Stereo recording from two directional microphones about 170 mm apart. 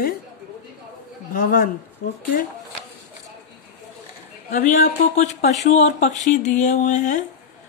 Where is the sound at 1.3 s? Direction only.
55° left (ahead or behind).